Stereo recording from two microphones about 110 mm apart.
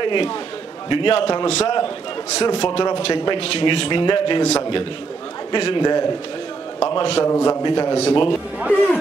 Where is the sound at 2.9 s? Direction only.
70° left (ahead or behind).